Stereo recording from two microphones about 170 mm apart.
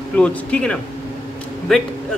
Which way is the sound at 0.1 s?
5° left (ahead or behind).